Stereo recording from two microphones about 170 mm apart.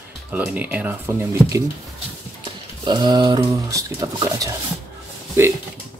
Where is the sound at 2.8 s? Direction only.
25° right (ahead or behind).